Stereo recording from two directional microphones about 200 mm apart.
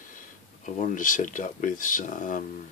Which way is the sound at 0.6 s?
40° left (ahead or behind).